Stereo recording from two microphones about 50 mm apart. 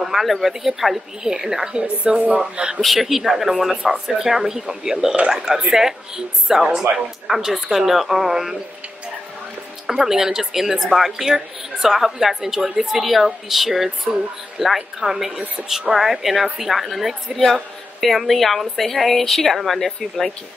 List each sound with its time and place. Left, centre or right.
0.0 s speech: centre
2.8 s a woman's voice: centre
4.9 s speech: right
9.8 s a woman's voice: centre